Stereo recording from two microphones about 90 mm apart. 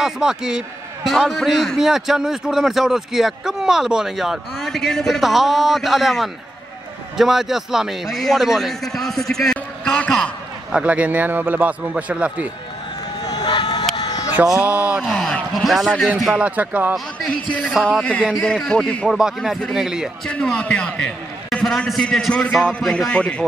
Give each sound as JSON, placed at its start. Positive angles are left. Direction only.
{"t": 0.0, "sound": "a man's voice", "side_deg": -5}
{"t": 10.7, "sound": "a man's voice", "side_deg": -15}
{"t": 13.2, "sound": "vehicle", "side_deg": 45}
{"t": 13.9, "sound": "a sound", "side_deg": 45}
{"t": 14.6, "sound": "a man's voice", "side_deg": -15}
{"t": 15.0, "sound": "a man's voice", "side_deg": 0}
{"t": 16.3, "sound": "a man's voice", "side_deg": -15}
{"t": 17.3, "sound": "a man's voice", "side_deg": 15}
{"t": 19.0, "sound": "a man's voice", "side_deg": -5}
{"t": 20.2, "sound": "a man's voice", "side_deg": 10}